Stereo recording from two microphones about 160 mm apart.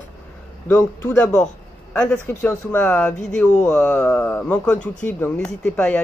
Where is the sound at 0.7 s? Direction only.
10° left (ahead or behind).